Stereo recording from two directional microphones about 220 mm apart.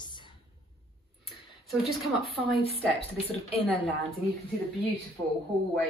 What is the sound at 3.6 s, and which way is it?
Speech, 5° left (ahead or behind).